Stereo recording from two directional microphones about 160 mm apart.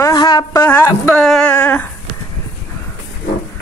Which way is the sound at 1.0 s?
5° left (ahead or behind).